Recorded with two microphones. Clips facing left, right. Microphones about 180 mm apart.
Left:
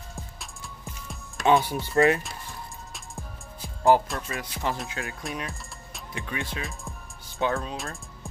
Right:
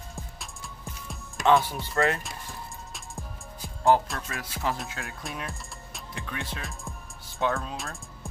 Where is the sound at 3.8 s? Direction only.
Centre (ahead or behind).